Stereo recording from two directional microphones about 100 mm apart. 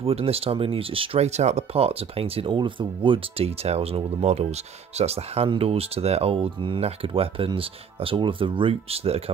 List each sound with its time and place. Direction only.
0.0 s speech: 80° right